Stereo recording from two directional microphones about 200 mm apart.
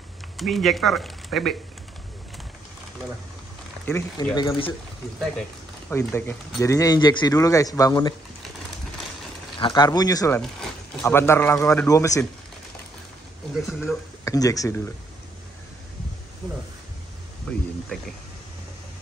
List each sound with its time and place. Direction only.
0.4 s speech: centre (ahead or behind)
3.8 s speech: 15° left (ahead or behind)
5.9 s speech: 10° left (ahead or behind)
9.6 s speech: 20° left (ahead or behind)
13.6 s speech: centre (ahead or behind)
14.2 s speech: 15° left (ahead or behind)
17.5 s speech: 5° left (ahead or behind)